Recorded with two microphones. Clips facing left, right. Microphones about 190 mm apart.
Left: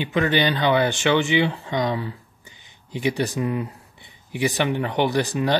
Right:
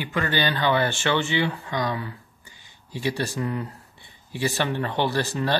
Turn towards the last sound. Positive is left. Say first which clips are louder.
# left 3 dB
turn(degrees=15)  # may be behind; listen again after turning